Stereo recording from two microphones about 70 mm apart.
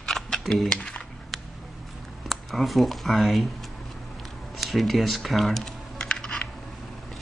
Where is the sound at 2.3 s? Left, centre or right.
Centre.